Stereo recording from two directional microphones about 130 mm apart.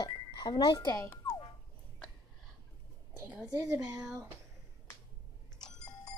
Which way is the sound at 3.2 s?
10° right (ahead or behind).